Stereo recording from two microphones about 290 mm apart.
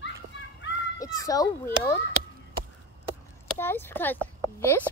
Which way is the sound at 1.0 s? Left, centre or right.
Centre.